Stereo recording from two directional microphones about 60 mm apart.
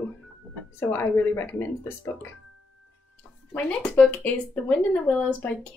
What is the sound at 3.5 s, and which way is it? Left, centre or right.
A woman's voice, left.